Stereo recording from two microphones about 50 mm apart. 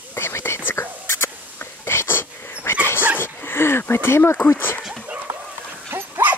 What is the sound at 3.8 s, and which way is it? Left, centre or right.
Speech, left.